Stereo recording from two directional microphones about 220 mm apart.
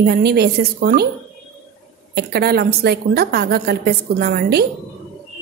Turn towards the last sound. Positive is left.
turn(degrees=-45)  # may be behind; listen again after turning